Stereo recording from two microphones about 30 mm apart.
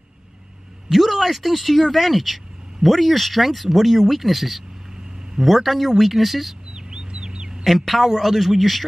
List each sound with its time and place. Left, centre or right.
0.8 s speech: centre
6.7 s bird: right
7.6 s speech: centre